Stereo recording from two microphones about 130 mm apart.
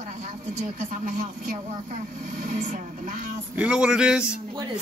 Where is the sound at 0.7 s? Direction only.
90° right.